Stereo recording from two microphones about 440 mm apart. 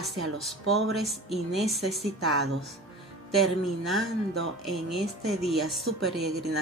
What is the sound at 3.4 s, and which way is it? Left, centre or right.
A woman's voice, centre.